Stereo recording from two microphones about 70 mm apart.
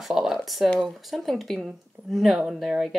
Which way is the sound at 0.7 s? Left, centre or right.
Centre.